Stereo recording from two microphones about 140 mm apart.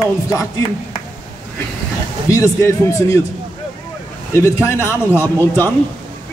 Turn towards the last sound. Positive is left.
turn(degrees=15)  # may be behind; listen again after turning